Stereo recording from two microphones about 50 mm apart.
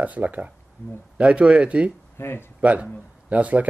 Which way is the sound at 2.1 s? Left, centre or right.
Left.